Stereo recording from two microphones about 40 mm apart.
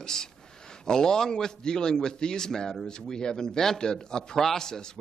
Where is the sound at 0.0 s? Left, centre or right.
Centre.